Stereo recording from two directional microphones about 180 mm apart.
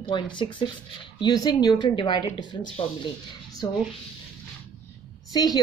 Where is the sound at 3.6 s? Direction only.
20° left (ahead or behind).